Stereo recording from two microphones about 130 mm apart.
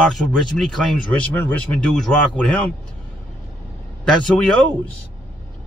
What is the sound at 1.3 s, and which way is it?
A man's voice, 15° left (ahead or behind).